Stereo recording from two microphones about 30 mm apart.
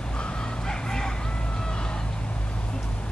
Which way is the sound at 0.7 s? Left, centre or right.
Left.